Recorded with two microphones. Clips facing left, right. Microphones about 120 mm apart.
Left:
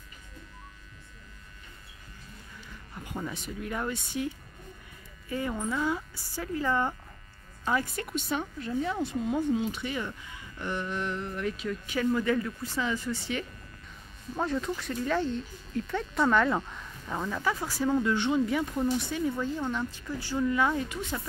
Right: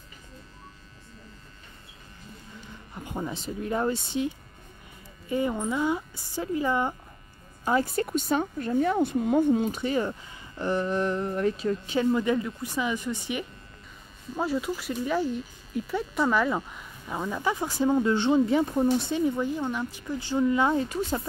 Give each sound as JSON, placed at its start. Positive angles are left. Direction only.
{"t": 2.9, "sound": "speech", "side_deg": -25}
{"t": 5.3, "sound": "speech", "side_deg": -20}
{"t": 7.6, "sound": "a woman's voice", "side_deg": -30}